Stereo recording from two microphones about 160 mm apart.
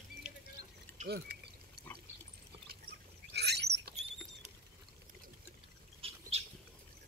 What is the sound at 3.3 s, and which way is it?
Bird, 90° right.